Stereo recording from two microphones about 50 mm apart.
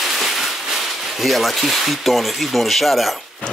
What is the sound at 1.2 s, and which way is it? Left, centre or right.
Speech, centre.